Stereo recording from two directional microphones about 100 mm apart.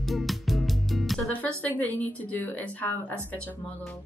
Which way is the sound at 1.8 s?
15° left (ahead or behind).